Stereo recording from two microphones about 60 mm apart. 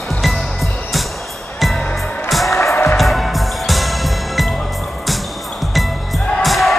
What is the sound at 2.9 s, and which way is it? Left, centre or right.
Music, centre.